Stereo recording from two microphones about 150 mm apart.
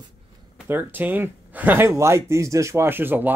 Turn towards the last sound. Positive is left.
turn(degrees=-15)  # may be behind; listen again after turning